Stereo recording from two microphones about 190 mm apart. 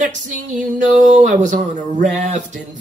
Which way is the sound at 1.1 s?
40° right (ahead or behind).